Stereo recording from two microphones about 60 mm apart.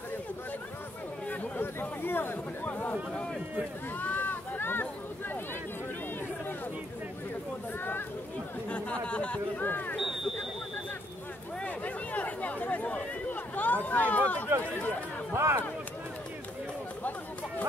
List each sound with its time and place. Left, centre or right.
1.3 s chatter: left
1.8 s speech: left
4.0 s a sound: left
8.6 s speech: left
11.6 s chatter: left
13.8 s speech: left
15.3 s speech: right